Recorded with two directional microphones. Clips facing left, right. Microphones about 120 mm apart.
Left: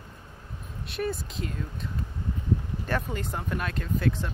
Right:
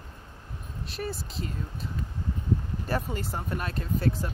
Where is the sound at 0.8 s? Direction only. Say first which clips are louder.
Left 4 dB; centre (ahead or behind).